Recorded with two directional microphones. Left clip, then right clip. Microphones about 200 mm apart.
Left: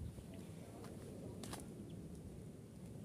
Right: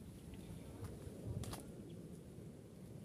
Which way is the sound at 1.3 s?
15° left (ahead or behind).